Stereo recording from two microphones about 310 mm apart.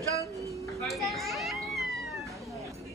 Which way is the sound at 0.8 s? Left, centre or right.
Centre.